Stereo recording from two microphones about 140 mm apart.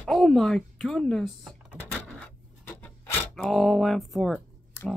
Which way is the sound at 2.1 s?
15° left (ahead or behind).